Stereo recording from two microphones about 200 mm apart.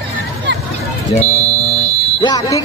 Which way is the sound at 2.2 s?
20° left (ahead or behind).